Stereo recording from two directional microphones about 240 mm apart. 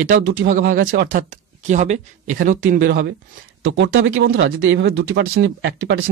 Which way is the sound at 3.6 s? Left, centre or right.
Right.